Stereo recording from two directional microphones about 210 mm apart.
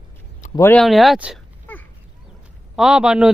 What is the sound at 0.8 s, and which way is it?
Speech, centre (ahead or behind).